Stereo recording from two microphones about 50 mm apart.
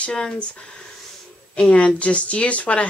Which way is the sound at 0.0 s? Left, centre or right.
Left.